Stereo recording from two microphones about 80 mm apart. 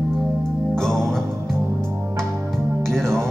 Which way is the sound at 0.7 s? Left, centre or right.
Centre.